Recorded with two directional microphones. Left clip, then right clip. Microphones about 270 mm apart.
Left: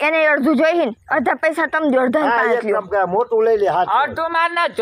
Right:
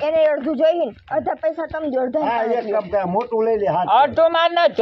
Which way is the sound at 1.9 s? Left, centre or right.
Left.